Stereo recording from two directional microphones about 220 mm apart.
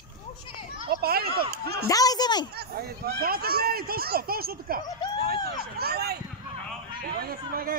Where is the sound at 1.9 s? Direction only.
15° left (ahead or behind).